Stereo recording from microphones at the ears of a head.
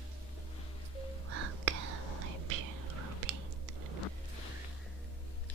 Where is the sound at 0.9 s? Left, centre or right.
Right.